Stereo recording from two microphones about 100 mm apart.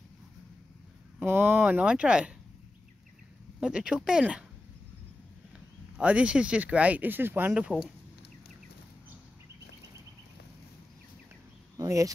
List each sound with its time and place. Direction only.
1.2 s speech: 25° right (ahead or behind)
1.6 s speech: 15° right (ahead or behind)
3.6 s speech: 10° right (ahead or behind)
5.9 s speech: 10° right (ahead or behind)
11.7 s a sound: 35° right (ahead or behind)